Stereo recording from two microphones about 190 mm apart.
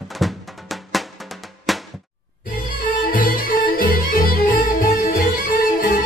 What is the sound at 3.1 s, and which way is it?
Music, 45° left (ahead or behind).